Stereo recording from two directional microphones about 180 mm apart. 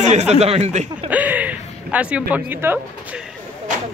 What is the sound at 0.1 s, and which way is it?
Speech, 40° right (ahead or behind).